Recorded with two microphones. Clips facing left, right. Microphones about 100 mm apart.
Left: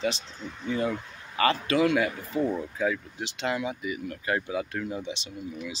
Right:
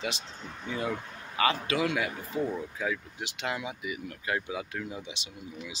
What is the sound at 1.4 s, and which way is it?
Speech, 10° right (ahead or behind).